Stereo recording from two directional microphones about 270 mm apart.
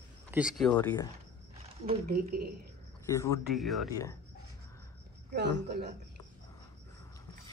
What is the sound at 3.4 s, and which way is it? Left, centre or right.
Speech, centre.